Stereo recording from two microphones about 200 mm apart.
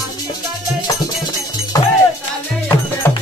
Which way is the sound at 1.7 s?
20° left (ahead or behind).